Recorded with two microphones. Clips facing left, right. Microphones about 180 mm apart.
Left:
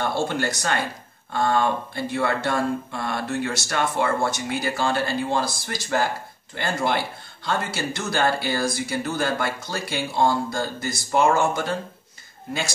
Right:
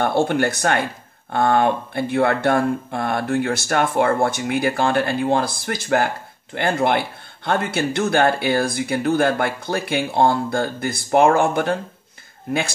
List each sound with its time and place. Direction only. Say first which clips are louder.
0.0 s a man's voice: right 6 dB; 55° right (ahead or behind)